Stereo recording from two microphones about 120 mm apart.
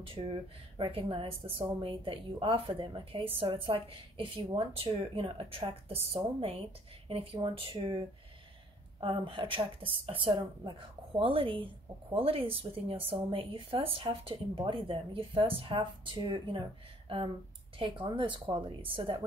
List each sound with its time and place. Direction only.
0.0 s speech: 50° right (ahead or behind)
9.0 s speech: 50° right (ahead or behind)
18.0 s speech: 40° right (ahead or behind)